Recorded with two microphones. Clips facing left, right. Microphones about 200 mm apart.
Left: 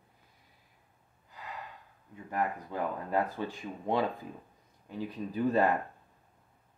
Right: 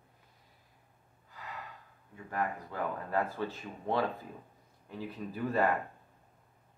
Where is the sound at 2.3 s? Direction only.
20° left (ahead or behind).